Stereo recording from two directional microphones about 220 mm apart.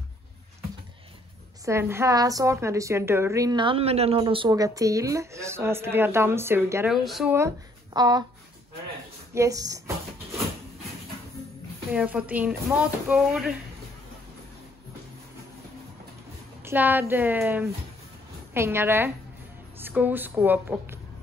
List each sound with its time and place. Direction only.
1.6 s a woman's voice: 10° right (ahead or behind)
7.3 s speech: 15° right (ahead or behind)
9.3 s a woman's voice: 15° right (ahead or behind)
11.9 s speech: 5° right (ahead or behind)
16.6 s a woman's voice: 10° right (ahead or behind)